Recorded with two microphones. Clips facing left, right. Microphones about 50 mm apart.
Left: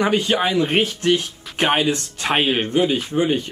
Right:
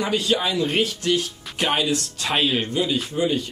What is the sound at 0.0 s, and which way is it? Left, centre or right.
Speech, left.